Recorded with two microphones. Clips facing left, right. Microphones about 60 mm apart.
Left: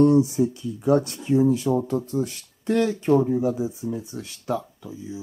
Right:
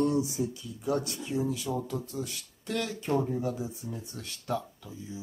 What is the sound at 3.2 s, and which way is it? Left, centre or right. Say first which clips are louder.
Speech: left 9 dB; centre.